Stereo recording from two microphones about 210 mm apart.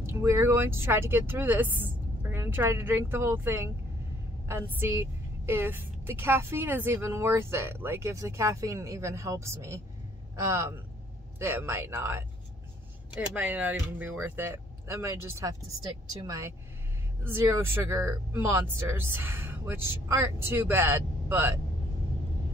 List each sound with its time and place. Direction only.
0.0 s a woman's voice: 10° right (ahead or behind)